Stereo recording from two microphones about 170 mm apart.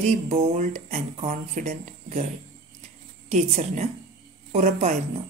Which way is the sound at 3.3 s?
45° right (ahead or behind).